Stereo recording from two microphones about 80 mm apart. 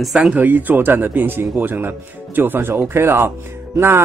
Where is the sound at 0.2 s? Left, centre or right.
Centre.